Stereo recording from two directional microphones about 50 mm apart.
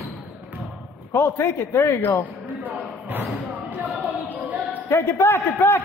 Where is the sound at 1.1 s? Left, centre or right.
Left.